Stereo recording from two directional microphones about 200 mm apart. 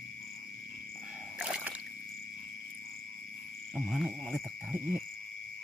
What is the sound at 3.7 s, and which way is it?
Insect, centre (ahead or behind).